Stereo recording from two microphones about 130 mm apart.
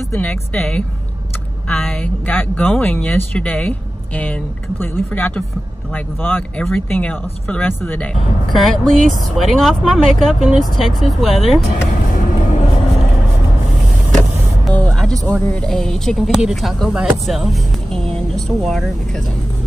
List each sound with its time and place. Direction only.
0.1 s speech: 10° left (ahead or behind)
12.1 s vehicle: 80° left; by 12.6 s 65° left (ahead or behind)
14.7 s music: 10° left (ahead or behind)
15.2 s speech: 10° left (ahead or behind)